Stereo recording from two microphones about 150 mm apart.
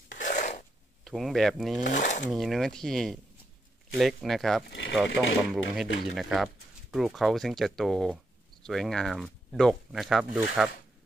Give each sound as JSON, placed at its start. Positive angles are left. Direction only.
{"t": 0.1, "sound": "filing", "side_deg": 60}
{"t": 1.0, "sound": "speech", "side_deg": 0}
{"t": 1.8, "sound": "speech", "side_deg": 55}
{"t": 2.2, "sound": "speech", "side_deg": 0}